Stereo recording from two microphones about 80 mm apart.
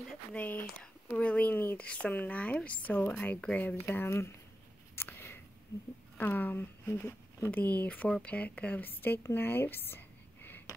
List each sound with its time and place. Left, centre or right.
0.3 s speech: left
3.3 s speech: centre
3.8 s speech: left
4.9 s a sound: left
6.1 s speech: left
9.3 s a sound: left